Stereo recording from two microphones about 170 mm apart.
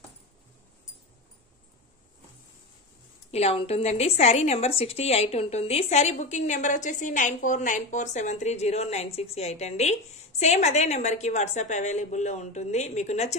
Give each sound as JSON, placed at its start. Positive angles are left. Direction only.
{"t": 3.3, "sound": "a woman's voice", "side_deg": 35}